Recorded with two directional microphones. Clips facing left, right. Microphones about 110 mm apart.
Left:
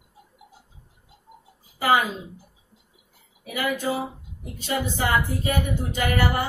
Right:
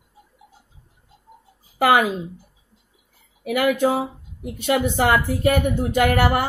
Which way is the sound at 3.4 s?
60° right (ahead or behind).